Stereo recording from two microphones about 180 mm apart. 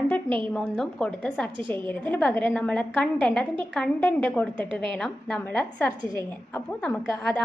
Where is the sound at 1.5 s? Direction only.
25° right (ahead or behind).